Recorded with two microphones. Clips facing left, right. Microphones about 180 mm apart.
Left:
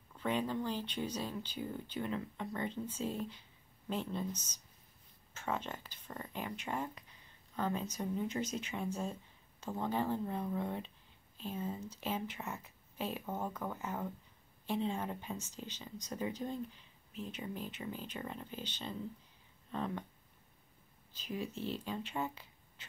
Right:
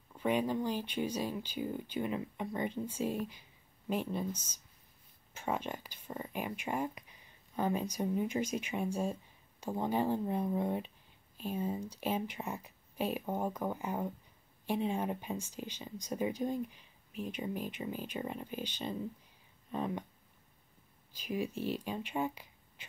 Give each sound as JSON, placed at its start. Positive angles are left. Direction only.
{"t": 0.1, "sound": "speech", "side_deg": -10}
{"t": 21.1, "sound": "speech", "side_deg": -10}